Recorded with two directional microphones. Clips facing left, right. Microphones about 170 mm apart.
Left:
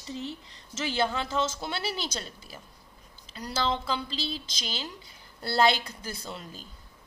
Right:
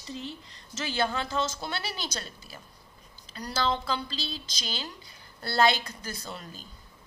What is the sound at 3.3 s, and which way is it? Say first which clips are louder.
Speech: even; 25° left (ahead or behind).